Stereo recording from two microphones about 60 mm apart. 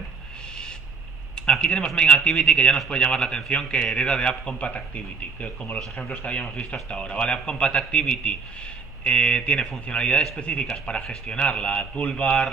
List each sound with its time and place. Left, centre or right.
1.3 s a man's voice: centre